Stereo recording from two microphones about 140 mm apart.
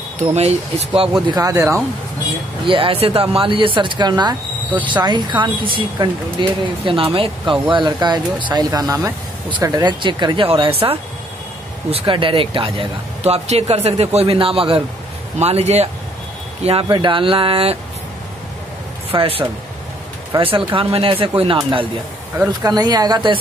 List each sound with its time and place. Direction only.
0.2 s speech: 50° right (ahead or behind)
1.3 s speech: 25° right (ahead or behind)
2.6 s speech: 40° right (ahead or behind)
16.8 s speech: 35° right (ahead or behind)
19.1 s speech: 40° right (ahead or behind)